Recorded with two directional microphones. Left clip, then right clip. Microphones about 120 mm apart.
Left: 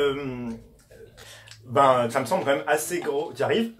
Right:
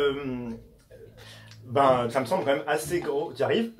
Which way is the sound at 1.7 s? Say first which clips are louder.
Left 3 dB; 15° right (ahead or behind).